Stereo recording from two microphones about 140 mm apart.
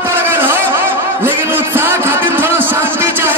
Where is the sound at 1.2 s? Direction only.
15° right (ahead or behind).